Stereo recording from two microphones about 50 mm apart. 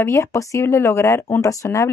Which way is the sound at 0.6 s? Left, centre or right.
Left.